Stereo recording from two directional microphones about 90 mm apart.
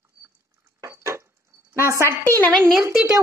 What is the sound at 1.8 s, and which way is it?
Speech, 30° right (ahead or behind).